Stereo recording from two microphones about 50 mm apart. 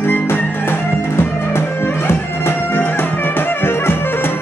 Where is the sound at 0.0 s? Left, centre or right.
Left.